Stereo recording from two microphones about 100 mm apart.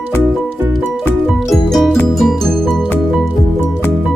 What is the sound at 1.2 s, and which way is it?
Music, centre (ahead or behind).